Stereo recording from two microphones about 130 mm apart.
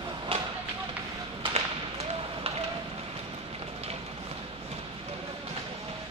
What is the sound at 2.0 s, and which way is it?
Run, 50° right (ahead or behind).